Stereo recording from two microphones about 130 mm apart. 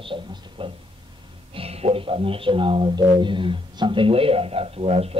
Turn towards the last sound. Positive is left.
turn(degrees=-50)  # may be behind; listen again after turning